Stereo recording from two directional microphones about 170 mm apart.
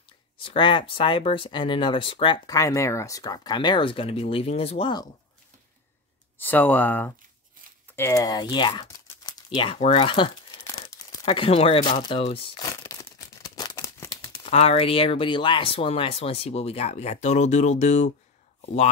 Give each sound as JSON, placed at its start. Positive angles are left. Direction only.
{"t": 0.4, "sound": "speech", "side_deg": 30}
{"t": 6.3, "sound": "speech", "side_deg": 10}
{"t": 10.5, "sound": "crumpling", "side_deg": 20}
{"t": 12.6, "sound": "tearing", "side_deg": 20}
{"t": 14.3, "sound": "speech", "side_deg": 35}